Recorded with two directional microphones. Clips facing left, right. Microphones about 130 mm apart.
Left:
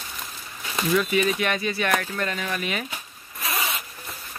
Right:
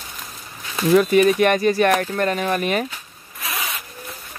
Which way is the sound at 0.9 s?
45° right (ahead or behind).